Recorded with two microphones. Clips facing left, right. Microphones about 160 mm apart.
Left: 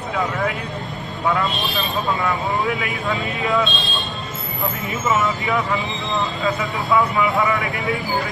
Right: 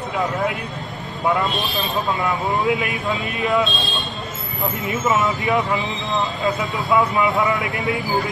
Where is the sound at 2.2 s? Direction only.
20° right (ahead or behind).